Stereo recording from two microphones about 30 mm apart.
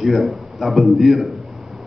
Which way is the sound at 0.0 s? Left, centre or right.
Centre.